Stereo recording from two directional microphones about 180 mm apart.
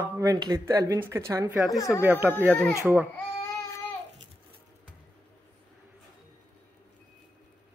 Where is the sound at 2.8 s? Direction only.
10° right (ahead or behind).